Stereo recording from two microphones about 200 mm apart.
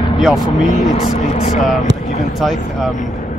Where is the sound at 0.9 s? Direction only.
35° left (ahead or behind).